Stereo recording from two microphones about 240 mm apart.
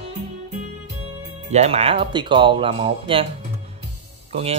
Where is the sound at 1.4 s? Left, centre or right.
Right.